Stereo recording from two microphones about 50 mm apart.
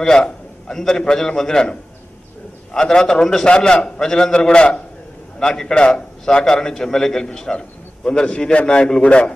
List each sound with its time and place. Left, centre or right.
0.0 s a man's voice: centre